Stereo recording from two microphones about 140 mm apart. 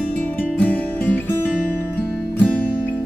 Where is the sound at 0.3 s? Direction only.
10° left (ahead or behind).